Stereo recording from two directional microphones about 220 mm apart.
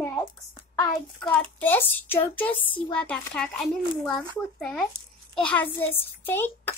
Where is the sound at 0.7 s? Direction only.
10° left (ahead or behind).